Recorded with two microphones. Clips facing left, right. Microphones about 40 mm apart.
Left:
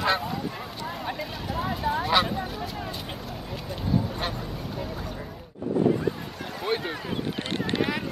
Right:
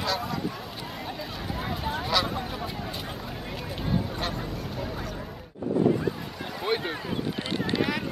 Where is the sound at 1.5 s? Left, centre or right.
Centre.